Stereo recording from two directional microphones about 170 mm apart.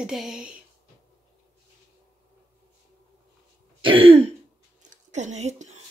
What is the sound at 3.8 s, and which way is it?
Throat clearing, 30° right (ahead or behind).